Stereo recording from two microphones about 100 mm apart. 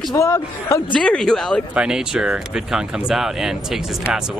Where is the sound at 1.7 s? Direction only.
10° right (ahead or behind).